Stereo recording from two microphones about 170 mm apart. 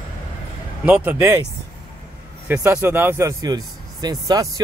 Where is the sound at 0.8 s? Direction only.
10° right (ahead or behind).